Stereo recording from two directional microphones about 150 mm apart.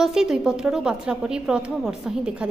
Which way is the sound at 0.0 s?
5° right (ahead or behind).